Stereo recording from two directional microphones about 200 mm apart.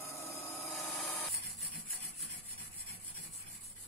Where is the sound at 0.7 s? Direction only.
Centre (ahead or behind).